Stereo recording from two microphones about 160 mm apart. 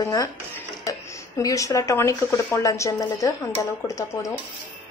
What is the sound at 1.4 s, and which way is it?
Dishes, 20° left (ahead or behind).